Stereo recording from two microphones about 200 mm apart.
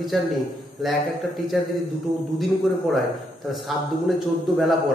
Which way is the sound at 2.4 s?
Centre (ahead or behind).